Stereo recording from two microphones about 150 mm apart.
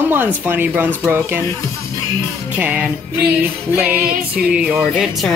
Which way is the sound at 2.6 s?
10° right (ahead or behind).